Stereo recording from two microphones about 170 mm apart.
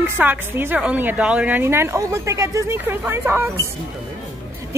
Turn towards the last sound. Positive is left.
turn(degrees=-10)  # may be behind; listen again after turning